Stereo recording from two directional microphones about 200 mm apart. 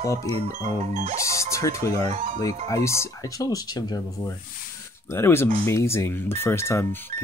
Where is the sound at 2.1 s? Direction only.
35° right (ahead or behind).